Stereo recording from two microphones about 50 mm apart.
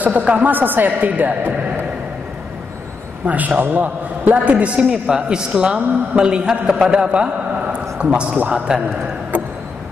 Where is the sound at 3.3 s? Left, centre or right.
Right.